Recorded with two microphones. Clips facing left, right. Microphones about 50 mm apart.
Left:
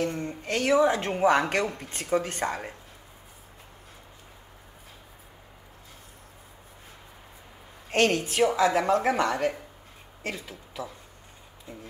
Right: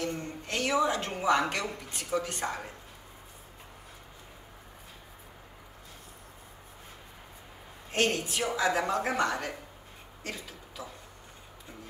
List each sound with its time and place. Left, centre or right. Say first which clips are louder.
0.0 s a sound: left 5 dB; left
0.7 s speech: left 6 dB; left
7.9 s a woman's voice: left 5 dB; left